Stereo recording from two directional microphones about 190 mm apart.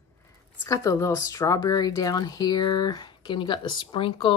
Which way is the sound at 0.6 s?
15° left (ahead or behind).